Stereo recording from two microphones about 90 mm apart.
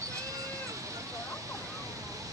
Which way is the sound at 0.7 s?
35° right (ahead or behind).